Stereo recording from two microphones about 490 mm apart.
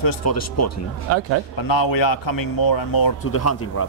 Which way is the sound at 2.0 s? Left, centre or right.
Left.